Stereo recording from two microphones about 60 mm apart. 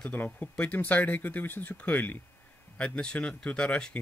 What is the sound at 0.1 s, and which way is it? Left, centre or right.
Speech, left.